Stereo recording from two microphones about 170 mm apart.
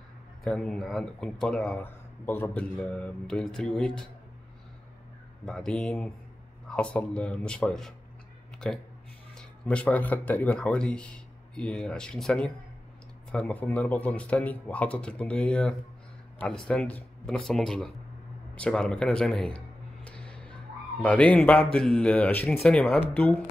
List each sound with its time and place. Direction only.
0.4 s speech: 5° left (ahead or behind)
5.4 s speech: centre (ahead or behind)
9.4 s speech: 5° left (ahead or behind)
20.1 s a sound: 5° left (ahead or behind)
21.0 s speech: 10° left (ahead or behind)